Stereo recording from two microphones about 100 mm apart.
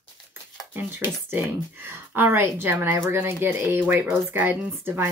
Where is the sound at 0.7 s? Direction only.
20° right (ahead or behind).